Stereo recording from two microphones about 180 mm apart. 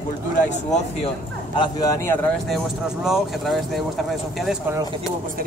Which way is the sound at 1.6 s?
20° left (ahead or behind).